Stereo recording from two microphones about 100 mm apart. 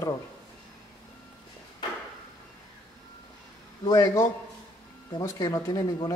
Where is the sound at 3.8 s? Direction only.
35° left (ahead or behind).